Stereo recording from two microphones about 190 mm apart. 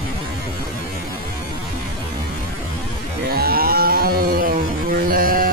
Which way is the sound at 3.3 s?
50° right (ahead or behind).